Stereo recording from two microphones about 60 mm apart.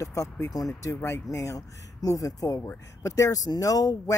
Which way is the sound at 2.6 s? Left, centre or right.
Left.